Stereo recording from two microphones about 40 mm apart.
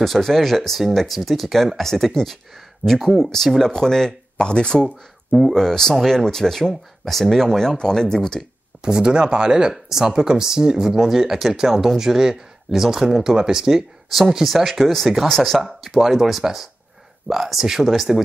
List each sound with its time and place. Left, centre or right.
0.0 s speech: centre; by 4.8 s left
4.8 s speech: centre
5.5 s speech: centre
8.8 s speech: right
14.0 s speech: centre
15.6 s speech: centre